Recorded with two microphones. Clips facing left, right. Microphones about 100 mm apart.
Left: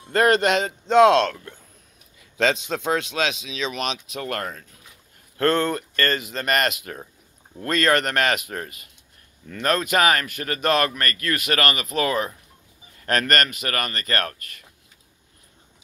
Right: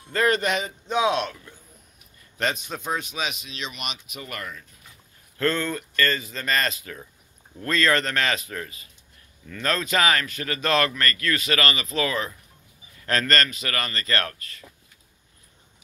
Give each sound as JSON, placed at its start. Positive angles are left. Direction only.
{"t": 0.1, "sound": "speech", "side_deg": 70}
{"t": 2.1, "sound": "a man's voice", "side_deg": 90}
{"t": 4.1, "sound": "speech", "side_deg": 75}
{"t": 5.4, "sound": "speech", "side_deg": 60}